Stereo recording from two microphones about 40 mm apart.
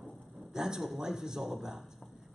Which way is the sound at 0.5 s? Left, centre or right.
Centre.